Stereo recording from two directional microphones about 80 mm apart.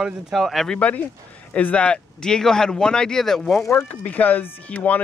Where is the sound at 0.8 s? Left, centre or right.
Centre.